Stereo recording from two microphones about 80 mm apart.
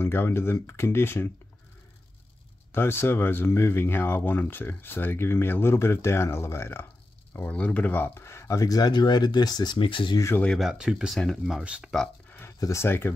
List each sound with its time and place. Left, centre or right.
0.0 s speech: left
2.7 s speech: left
7.3 s speech: centre; by 10.1 s left
10.6 s speech: centre
11.6 s speech: centre
12.3 s a sound: left
12.5 s speech: left
12.8 s speech: left